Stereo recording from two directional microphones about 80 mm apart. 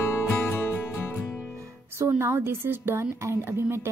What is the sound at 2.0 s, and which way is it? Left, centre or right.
A woman's voice, right.